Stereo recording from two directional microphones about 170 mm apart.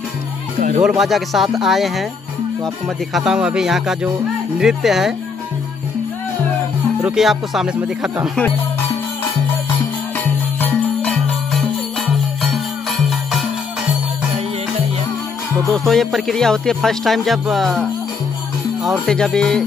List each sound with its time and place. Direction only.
0.6 s speech: 50° right (ahead or behind)
0.8 s music: centre (ahead or behind)
3.1 s music: 5° right (ahead or behind)
7.1 s music: centre (ahead or behind)
9.7 s music: 10° left (ahead or behind)
15.6 s music: centre (ahead or behind)